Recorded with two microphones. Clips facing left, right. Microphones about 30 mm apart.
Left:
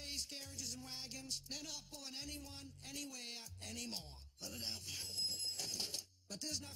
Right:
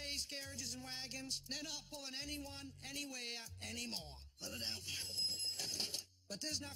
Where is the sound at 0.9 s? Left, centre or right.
Right.